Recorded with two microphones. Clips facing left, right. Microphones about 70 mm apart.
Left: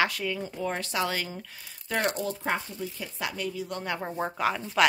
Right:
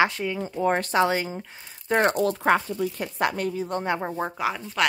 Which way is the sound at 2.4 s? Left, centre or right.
Right.